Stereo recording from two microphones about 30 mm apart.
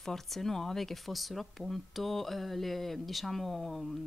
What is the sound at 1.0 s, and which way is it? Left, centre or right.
Speech, centre.